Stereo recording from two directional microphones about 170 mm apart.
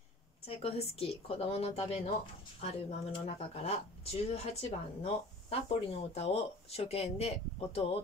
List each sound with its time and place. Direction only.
0.5 s speech: 35° left (ahead or behind)